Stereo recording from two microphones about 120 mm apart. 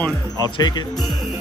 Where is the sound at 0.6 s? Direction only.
35° left (ahead or behind).